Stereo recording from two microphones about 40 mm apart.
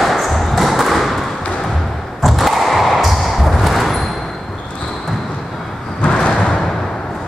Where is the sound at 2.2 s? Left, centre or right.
Centre.